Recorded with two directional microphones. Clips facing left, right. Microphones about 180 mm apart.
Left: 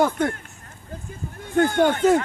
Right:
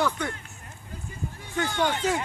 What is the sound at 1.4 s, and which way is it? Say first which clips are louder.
Speech: left 9 dB; 50° left (ahead or behind).